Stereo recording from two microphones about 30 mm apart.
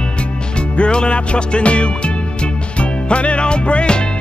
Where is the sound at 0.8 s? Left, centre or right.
Left.